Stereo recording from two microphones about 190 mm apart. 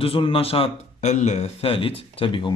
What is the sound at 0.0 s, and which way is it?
Speech, 30° left (ahead or behind).